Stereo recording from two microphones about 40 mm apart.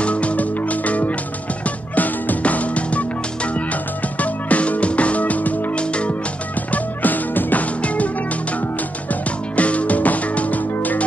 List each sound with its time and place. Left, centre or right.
0.0 s music: left
4.2 s music: left
5.8 s music: left
6.7 s music: left
7.8 s music: left
9.1 s music: left